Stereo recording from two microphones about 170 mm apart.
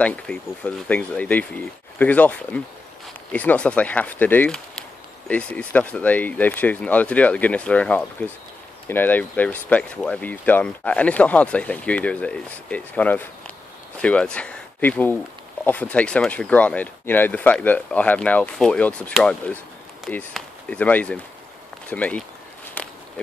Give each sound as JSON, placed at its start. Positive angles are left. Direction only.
{"t": 0.0, "sound": "speech", "side_deg": 5}